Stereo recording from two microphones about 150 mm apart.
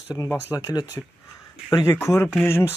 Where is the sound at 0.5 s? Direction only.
30° left (ahead or behind).